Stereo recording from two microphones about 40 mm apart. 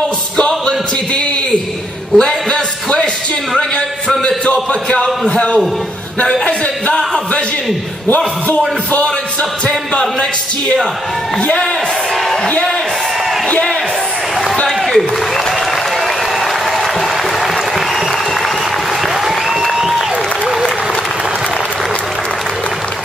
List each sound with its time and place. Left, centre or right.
0.4 s music: left
2.1 s a sound: left
5.3 s a man's voice: left
8.5 s speech: left
19.2 s applause: centre